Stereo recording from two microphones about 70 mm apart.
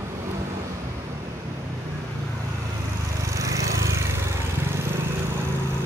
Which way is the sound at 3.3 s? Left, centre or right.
Right.